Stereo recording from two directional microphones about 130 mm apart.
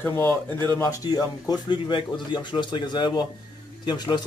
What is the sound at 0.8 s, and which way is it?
Speech, 30° left (ahead or behind).